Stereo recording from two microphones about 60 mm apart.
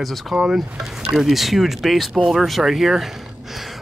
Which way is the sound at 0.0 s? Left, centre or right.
Centre.